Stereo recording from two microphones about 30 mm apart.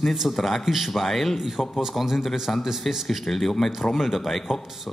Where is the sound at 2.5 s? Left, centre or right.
Left.